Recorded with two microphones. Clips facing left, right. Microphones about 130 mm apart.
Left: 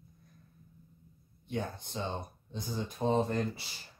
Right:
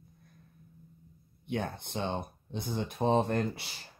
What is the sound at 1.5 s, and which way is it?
Speech, 65° right (ahead or behind).